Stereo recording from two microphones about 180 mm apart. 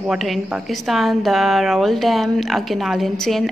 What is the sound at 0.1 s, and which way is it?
A woman's voice, centre (ahead or behind).